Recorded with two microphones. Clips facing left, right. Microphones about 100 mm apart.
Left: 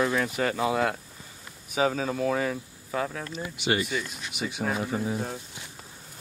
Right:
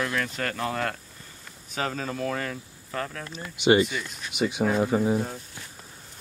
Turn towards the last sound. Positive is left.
turn(degrees=-30)  # may be behind; listen again after turning